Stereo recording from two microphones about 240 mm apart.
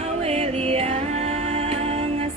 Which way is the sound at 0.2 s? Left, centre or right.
Right.